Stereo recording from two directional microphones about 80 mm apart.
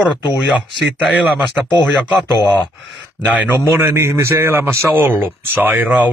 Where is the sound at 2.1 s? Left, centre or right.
Left.